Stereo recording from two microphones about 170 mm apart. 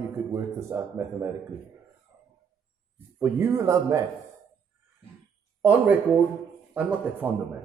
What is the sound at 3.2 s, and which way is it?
Speech, 15° right (ahead or behind).